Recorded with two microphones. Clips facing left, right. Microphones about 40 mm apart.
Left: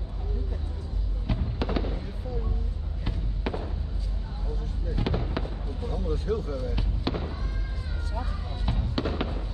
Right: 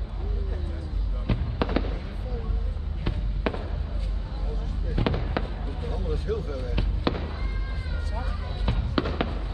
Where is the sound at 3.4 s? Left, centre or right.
Centre.